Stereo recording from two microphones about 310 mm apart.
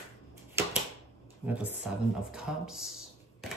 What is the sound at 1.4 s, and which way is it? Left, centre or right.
Speech, centre.